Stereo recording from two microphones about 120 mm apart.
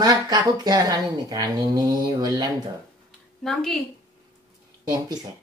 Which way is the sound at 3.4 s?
5° left (ahead or behind).